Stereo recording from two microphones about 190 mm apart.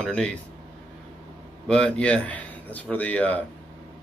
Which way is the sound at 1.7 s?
5° left (ahead or behind).